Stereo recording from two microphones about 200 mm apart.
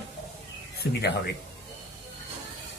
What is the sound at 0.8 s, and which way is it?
Speech, 55° left (ahead or behind).